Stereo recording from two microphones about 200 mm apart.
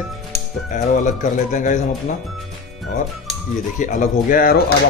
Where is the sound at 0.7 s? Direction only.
40° left (ahead or behind).